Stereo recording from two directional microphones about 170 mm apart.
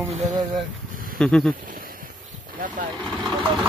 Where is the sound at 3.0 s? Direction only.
5° left (ahead or behind).